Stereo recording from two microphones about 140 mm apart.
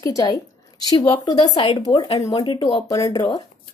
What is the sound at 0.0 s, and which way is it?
A woman's voice, 25° left (ahead or behind).